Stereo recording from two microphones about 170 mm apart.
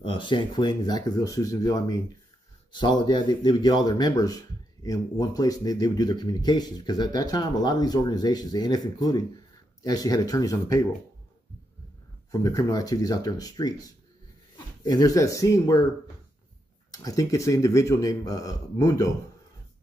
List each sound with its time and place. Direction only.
0.0 s speech: 30° left (ahead or behind)
12.3 s speech: 20° left (ahead or behind)
16.9 s speech: 20° left (ahead or behind)